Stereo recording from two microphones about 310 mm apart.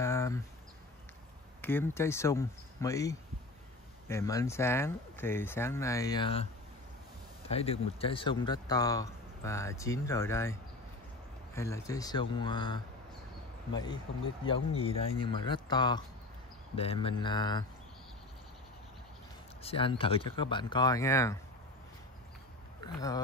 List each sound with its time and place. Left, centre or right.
0.0 s a sound: centre
1.6 s speech: centre
7.4 s speech: centre
19.6 s speech: centre
22.8 s speech: centre